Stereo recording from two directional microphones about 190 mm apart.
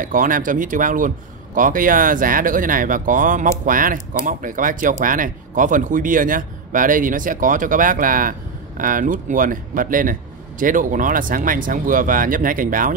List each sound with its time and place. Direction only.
0.0 s speech: 45° right (ahead or behind)